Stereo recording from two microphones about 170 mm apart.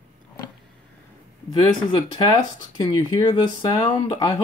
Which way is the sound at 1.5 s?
25° left (ahead or behind).